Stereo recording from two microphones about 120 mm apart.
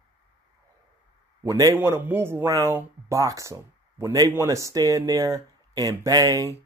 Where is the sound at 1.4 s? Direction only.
30° right (ahead or behind).